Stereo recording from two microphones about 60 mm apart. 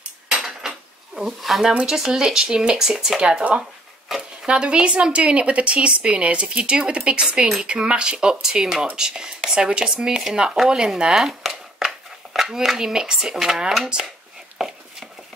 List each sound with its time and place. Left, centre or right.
0.3 s cutlery: centre
1.7 s a woman's voice: centre
4.1 s speech: centre
4.5 s a woman's voice: centre
14.6 s a sound: centre